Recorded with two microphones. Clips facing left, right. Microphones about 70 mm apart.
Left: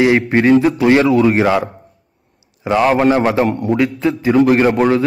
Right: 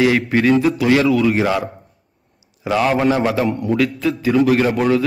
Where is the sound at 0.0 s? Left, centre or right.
Left.